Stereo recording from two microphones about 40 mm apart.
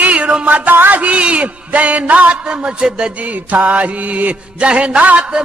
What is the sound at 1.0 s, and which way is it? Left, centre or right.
Music, right.